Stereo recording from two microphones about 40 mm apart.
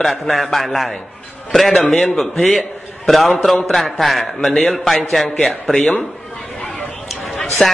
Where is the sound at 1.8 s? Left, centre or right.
Left.